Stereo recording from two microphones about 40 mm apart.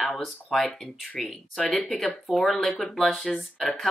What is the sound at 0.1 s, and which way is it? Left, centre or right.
Speech, centre.